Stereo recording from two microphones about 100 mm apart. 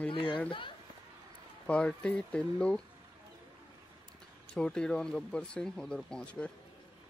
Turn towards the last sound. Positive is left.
turn(degrees=10)  # may be behind; listen again after turning